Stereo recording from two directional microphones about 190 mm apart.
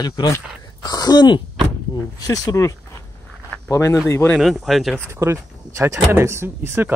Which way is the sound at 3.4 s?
10° left (ahead or behind).